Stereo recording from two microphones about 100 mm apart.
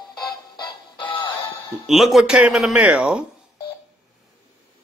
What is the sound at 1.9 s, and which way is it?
Speech, centre (ahead or behind).